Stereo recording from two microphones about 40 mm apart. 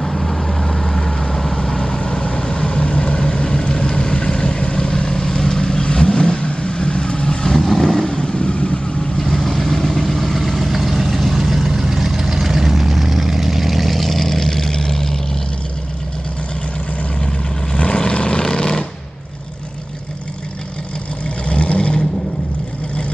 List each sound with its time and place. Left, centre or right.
0.0 s vehicle: centre; by 7.3 s left
7.6 s vehicle: centre
8.1 s vehicle: left
9.2 s vehicle: centre
17.3 s vehicle: left
21.5 s vehicle: left